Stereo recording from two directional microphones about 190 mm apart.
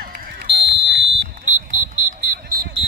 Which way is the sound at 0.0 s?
50° right (ahead or behind).